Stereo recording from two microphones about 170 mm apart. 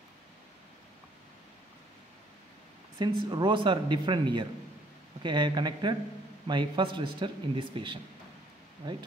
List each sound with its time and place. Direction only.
3.0 s speech: 25° right (ahead or behind)